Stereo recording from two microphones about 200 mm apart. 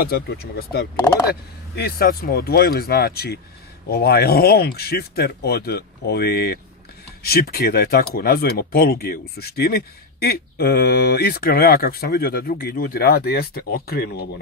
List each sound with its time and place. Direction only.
0.0 s speech: 50° left (ahead or behind)